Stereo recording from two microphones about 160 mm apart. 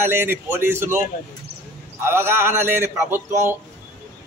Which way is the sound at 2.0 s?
15° right (ahead or behind).